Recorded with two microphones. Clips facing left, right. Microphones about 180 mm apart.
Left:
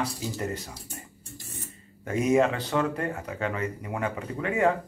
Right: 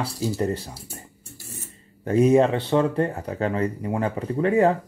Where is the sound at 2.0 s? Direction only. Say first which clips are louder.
Right 5 dB; 35° right (ahead or behind).